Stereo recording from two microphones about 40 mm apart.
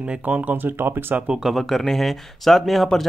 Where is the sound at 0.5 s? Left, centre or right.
Right.